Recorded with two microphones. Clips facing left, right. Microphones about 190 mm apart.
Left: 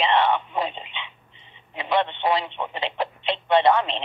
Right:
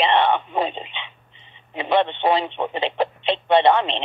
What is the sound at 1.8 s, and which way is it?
Speech, 25° right (ahead or behind).